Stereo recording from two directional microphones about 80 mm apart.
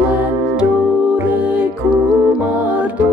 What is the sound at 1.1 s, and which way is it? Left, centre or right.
Music, centre.